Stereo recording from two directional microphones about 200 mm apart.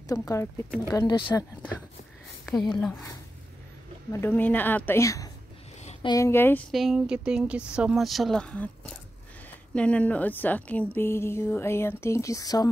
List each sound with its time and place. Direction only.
0.1 s a woman's voice: 15° left (ahead or behind)
4.1 s a woman's voice: 10° left (ahead or behind)
6.7 s a woman's voice: centre (ahead or behind); by 12.6 s 15° left (ahead or behind)